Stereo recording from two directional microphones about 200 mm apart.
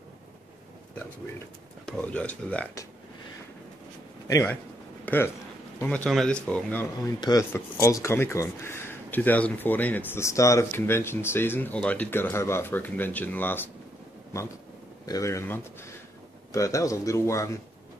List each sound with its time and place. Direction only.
1.9 s speech: 5° left (ahead or behind)
4.3 s speech: 15° left (ahead or behind)
7.2 s speech: 20° left (ahead or behind)
15.0 s speech: 15° left (ahead or behind)